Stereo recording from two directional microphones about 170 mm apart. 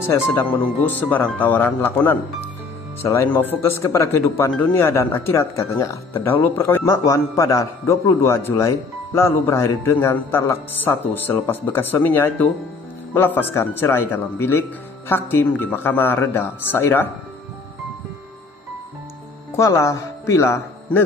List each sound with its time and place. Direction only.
0.0 s speech: 10° left (ahead or behind)
19.5 s speech: 20° left (ahead or behind)